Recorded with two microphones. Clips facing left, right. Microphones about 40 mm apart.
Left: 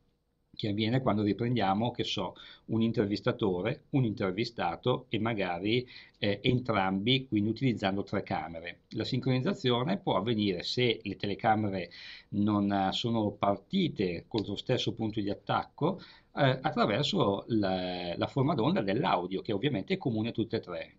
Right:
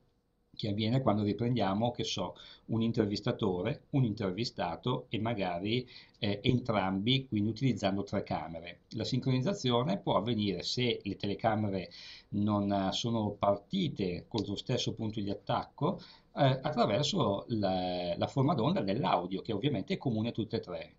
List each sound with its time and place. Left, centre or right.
0.6 s speech: left